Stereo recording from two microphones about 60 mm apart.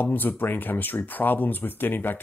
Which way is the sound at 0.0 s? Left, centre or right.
Left.